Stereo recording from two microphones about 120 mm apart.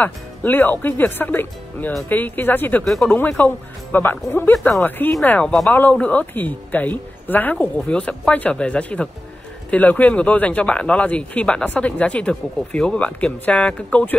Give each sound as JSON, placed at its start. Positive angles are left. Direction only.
{"t": 0.0, "sound": "speech", "side_deg": 15}
{"t": 2.8, "sound": "speech", "side_deg": 5}
{"t": 3.2, "sound": "speech", "side_deg": 15}